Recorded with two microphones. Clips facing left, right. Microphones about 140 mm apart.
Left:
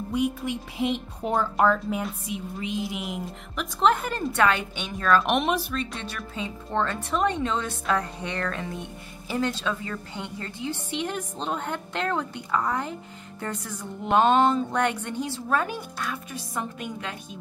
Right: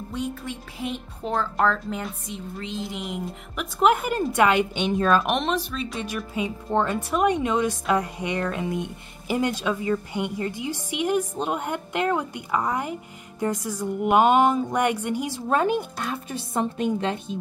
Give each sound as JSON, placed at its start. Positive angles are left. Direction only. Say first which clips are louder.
{"t": 0.1, "sound": "a woman's voice", "louder": "left 5 dB", "side_deg": 10}
{"t": 3.8, "sound": "a woman's voice", "louder": "right 3 dB", "side_deg": -10}
{"t": 5.2, "sound": "a woman's voice", "louder": "even", "side_deg": 5}
{"t": 5.7, "sound": "a woman's voice", "louder": "right 2 dB", "side_deg": -5}
{"t": 15.4, "sound": "a woman's voice", "louder": "right 7 dB", "side_deg": -20}